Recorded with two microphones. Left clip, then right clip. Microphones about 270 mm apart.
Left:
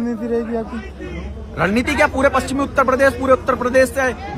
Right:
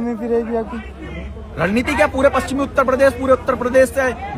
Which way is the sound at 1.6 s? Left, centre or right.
Centre.